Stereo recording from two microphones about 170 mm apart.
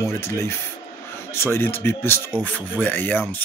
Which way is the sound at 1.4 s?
15° left (ahead or behind).